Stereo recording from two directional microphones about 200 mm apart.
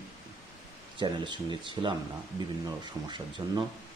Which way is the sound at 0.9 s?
25° right (ahead or behind).